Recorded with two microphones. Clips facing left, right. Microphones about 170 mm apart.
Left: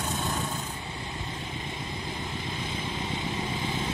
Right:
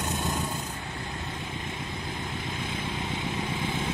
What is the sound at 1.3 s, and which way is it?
Vehicle, centre (ahead or behind).